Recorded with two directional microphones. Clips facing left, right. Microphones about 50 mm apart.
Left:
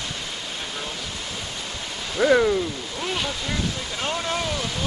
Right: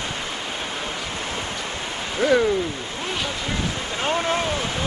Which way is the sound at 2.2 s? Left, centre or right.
Centre.